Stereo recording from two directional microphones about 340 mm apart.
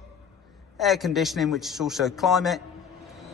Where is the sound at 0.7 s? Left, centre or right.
Centre.